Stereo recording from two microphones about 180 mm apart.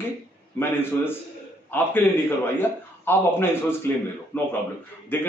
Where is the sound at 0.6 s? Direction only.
10° left (ahead or behind).